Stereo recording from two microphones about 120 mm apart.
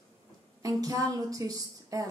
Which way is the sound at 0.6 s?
30° right (ahead or behind).